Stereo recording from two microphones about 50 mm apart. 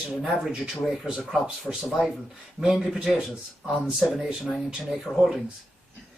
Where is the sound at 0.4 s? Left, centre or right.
Centre.